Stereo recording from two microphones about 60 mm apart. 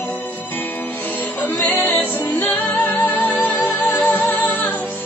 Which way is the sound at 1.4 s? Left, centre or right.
Left.